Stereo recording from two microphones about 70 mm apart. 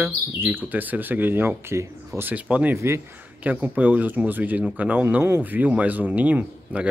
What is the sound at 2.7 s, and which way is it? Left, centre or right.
Speech, right.